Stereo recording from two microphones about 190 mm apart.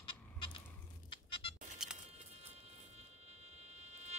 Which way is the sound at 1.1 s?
25° left (ahead or behind).